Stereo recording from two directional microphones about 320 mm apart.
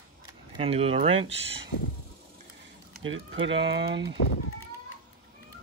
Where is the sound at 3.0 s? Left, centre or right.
Right.